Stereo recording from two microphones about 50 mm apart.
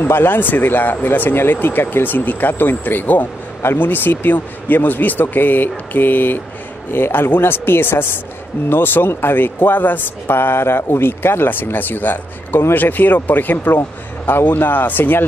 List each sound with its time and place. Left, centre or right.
0.0 s a man's voice: left